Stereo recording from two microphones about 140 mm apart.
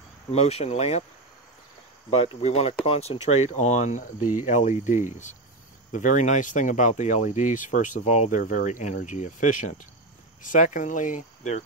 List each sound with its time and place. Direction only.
0.3 s speech: 50° left (ahead or behind)
2.0 s speech: 45° left (ahead or behind)